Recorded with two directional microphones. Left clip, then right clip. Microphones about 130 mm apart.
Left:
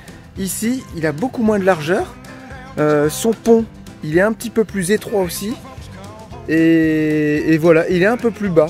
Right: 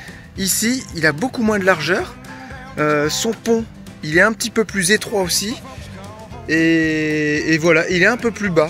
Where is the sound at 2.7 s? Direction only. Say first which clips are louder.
Left 2 dB; 45° left (ahead or behind).